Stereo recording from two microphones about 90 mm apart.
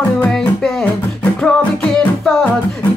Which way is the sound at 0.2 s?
5° left (ahead or behind).